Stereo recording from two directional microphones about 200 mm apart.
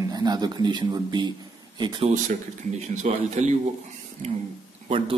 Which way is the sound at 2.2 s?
40° right (ahead or behind).